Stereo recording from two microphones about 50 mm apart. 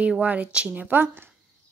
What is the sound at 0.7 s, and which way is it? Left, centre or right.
Speech, right.